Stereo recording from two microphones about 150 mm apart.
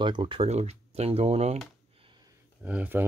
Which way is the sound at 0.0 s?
30° right (ahead or behind).